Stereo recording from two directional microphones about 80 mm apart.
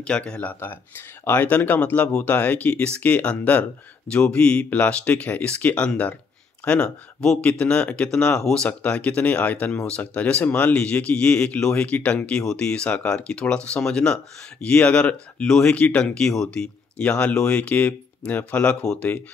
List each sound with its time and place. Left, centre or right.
0.0 s speech: centre